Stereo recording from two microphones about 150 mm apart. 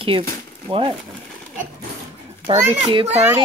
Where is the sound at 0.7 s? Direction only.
35° right (ahead or behind).